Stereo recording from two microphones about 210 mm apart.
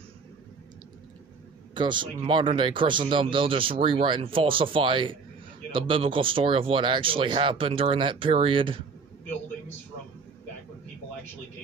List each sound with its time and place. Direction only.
1.7 s speech: 20° right (ahead or behind)